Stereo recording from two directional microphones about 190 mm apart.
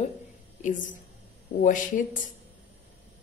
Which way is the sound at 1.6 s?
45° left (ahead or behind).